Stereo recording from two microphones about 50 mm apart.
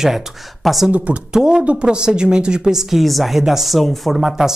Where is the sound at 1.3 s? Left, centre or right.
Centre.